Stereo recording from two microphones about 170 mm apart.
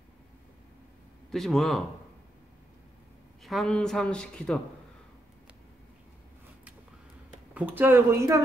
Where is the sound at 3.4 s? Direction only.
Centre (ahead or behind).